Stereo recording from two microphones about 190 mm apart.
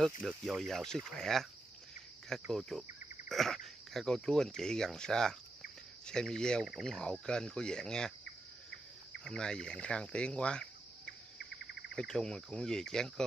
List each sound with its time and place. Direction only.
0.3 s speech: centre (ahead or behind)
9.2 s speech: 5° left (ahead or behind)
11.3 s bird: 60° left (ahead or behind)
11.9 s speech: 5° left (ahead or behind)